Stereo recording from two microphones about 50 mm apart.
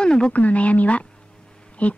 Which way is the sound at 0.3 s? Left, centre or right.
Left.